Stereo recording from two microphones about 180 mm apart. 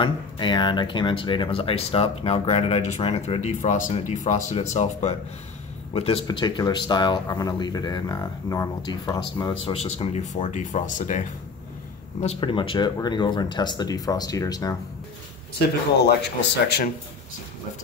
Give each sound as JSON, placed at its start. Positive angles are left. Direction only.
{"t": 0.0, "sound": "speech", "side_deg": 25}
{"t": 9.7, "sound": "speech", "side_deg": 35}
{"t": 12.2, "sound": "speech", "side_deg": 30}
{"t": 15.6, "sound": "speech", "side_deg": 60}